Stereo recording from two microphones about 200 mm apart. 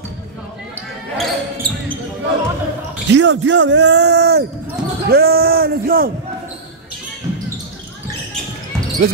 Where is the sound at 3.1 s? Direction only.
65° right (ahead or behind); by 6.1 s 50° right (ahead or behind).